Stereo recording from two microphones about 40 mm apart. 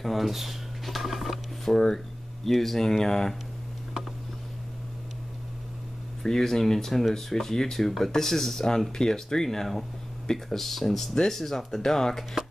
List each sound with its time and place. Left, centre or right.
0.0 s speech: centre
6.2 s speech: centre